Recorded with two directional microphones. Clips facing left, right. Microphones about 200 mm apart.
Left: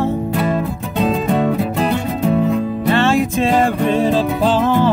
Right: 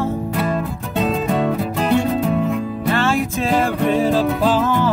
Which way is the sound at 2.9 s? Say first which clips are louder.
Left 4 dB; 25° left (ahead or behind).